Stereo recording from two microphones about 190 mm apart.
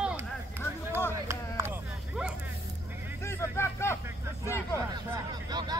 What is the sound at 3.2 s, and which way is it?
Vehicle, 15° left (ahead or behind).